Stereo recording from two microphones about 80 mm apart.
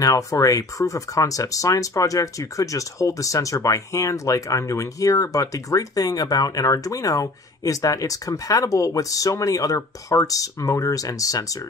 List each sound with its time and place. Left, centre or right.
0.0 s speech: left